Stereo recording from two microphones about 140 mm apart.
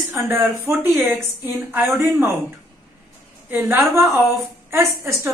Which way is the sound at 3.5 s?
15° right (ahead or behind).